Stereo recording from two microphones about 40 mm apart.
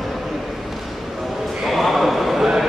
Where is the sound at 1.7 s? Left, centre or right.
Centre.